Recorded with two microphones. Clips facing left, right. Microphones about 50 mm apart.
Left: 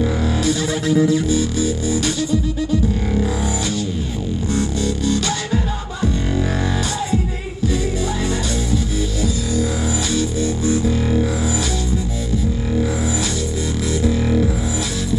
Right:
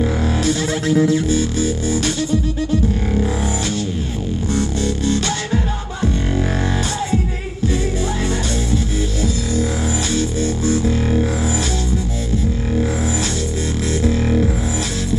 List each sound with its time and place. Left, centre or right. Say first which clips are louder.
0.4 s music: even; right
4.8 s music: even; right
6.8 s music: right 1 dB; right
9.6 s music: even; right